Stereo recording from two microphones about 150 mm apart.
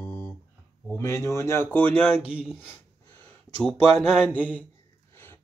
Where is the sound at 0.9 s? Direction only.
20° left (ahead or behind).